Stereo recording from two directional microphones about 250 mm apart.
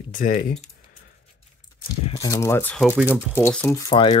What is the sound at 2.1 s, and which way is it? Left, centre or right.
Speech, centre.